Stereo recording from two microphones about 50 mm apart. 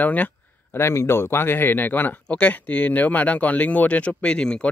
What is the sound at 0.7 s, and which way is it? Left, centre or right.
Speech, left.